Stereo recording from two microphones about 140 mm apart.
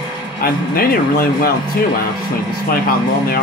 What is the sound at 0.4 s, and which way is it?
Speech, 90° left.